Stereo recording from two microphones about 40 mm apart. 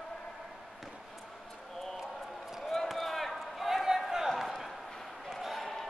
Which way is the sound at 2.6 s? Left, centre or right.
Centre.